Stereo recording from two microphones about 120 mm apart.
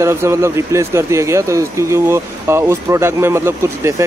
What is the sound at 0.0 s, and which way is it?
Speech, 20° right (ahead or behind).